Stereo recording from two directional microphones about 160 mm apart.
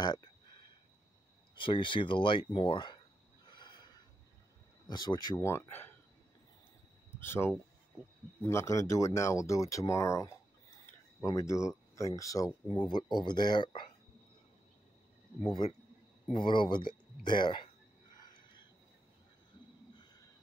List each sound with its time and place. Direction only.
0.0 s a sound: 25° left (ahead or behind)
1.6 s speech: 30° left (ahead or behind)
3.4 s a sound: 25° left (ahead or behind)
4.8 s speech: 25° left (ahead or behind)
7.2 s speech: 15° left (ahead or behind)
16.3 s speech: 30° left (ahead or behind)